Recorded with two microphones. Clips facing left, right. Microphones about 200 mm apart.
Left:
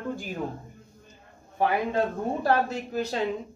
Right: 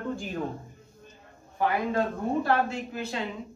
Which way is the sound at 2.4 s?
40° left (ahead or behind).